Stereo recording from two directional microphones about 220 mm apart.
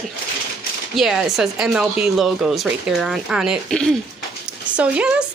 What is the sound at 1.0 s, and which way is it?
A woman's voice, centre (ahead or behind).